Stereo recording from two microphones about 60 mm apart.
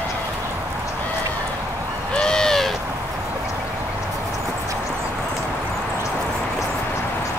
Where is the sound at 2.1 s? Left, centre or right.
Centre.